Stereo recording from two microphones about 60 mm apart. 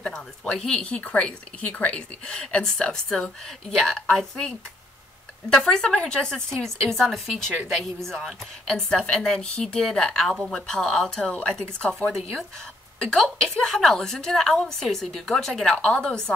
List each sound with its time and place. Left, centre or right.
0.0 s a woman's voice: centre
0.9 s a woman's voice: left
13.0 s a woman's voice: centre